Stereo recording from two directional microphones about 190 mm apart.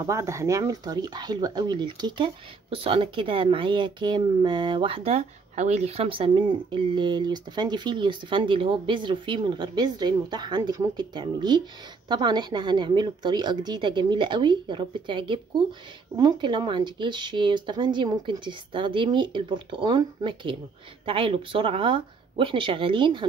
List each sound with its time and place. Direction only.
0.0 s speech: 15° right (ahead or behind)